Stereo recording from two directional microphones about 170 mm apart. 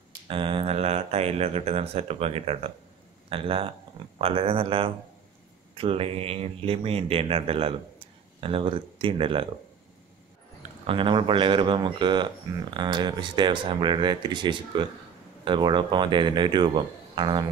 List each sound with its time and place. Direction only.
0.3 s speech: 30° right (ahead or behind)
10.9 s speech: 30° right (ahead or behind)